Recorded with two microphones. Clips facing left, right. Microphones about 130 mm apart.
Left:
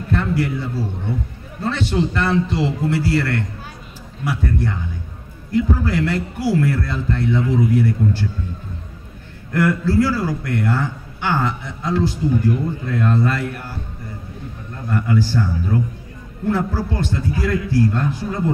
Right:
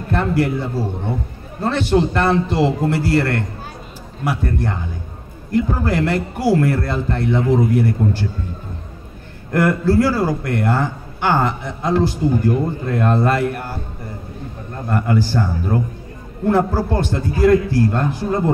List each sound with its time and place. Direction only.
0.1 s a man's voice: 50° right (ahead or behind)
9.5 s a man's voice: 50° right (ahead or behind)
14.9 s a man's voice: 50° right (ahead or behind)